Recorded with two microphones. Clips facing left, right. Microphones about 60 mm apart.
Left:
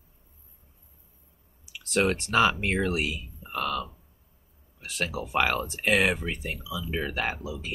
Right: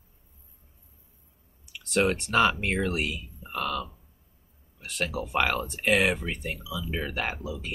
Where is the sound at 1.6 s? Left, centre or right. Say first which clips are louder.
Even; centre.